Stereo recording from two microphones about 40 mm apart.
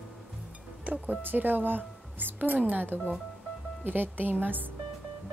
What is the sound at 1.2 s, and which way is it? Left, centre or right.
Speech, right.